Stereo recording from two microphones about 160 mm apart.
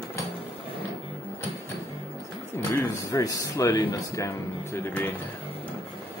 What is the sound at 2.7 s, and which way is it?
Speech, 20° left (ahead or behind).